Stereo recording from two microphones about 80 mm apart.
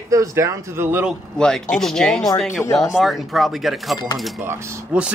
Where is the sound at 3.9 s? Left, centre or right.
Left.